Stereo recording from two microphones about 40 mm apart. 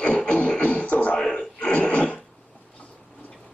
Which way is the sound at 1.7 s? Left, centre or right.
Left.